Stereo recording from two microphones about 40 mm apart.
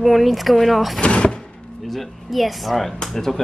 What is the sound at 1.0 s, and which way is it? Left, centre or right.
Speech, left.